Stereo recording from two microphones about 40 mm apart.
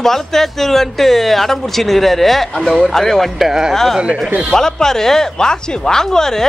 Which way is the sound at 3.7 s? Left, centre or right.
Centre.